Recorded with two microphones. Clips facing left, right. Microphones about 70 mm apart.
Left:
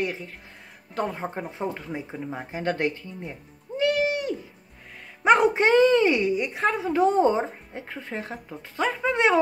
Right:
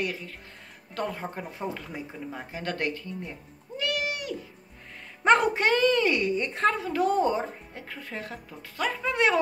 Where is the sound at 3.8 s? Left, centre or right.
Left.